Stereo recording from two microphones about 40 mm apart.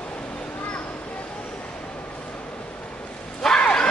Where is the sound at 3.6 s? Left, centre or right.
Left.